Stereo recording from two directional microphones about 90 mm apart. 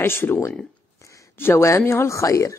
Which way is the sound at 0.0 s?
25° left (ahead or behind).